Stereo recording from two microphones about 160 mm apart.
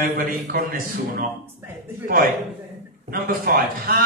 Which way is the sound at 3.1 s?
65° right (ahead or behind).